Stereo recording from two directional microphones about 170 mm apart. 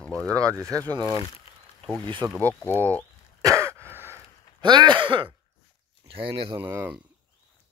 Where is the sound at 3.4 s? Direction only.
20° right (ahead or behind).